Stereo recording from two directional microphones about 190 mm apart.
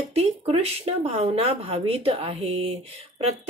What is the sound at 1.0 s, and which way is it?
Speech, 30° right (ahead or behind).